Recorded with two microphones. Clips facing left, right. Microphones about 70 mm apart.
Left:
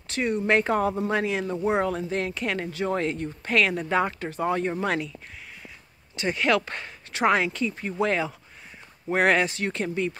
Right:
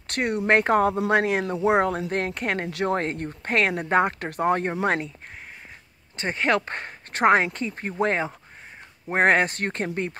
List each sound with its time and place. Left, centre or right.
0.0 s speech: right
6.1 s speech: right